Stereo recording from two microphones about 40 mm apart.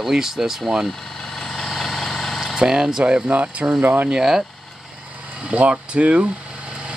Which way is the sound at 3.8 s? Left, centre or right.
Right.